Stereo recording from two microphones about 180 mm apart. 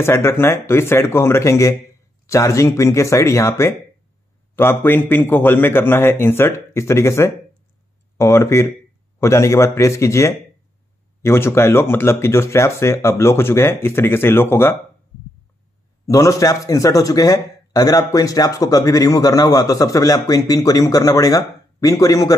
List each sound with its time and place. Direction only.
0.0 s speech: 15° left (ahead or behind)
16.1 s a man's voice: 20° left (ahead or behind)